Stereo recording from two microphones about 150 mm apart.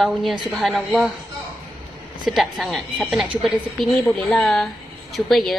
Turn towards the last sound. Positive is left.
turn(degrees=0)  # may be behind; listen again after turning